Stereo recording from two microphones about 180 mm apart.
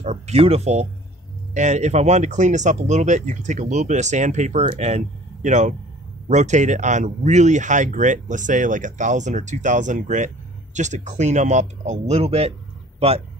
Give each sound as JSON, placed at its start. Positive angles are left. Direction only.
{"t": 0.0, "sound": "speech", "side_deg": -35}